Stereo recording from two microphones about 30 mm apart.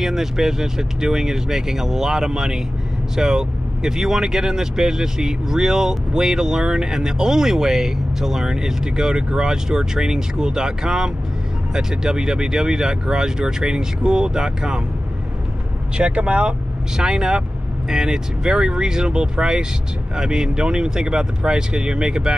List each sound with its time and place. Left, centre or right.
0.0 s speech: centre
16.0 s speech: right
16.9 s speech: right